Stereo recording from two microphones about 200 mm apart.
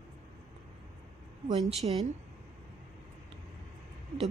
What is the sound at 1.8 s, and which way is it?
Speech, 35° right (ahead or behind).